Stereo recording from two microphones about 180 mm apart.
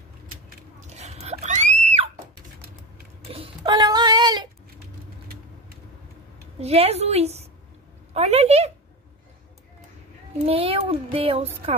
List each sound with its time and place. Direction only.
0.7 s screaming: 40° right (ahead or behind)
3.3 s a sound: 30° right (ahead or behind)
6.6 s a child's voice: 35° right (ahead or behind)
10.4 s a child's voice: 35° right (ahead or behind)